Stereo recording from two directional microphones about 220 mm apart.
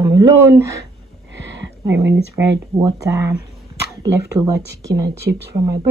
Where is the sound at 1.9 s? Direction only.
55° right (ahead or behind).